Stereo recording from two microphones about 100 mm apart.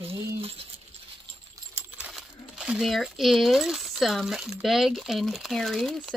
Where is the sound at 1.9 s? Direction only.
10° right (ahead or behind).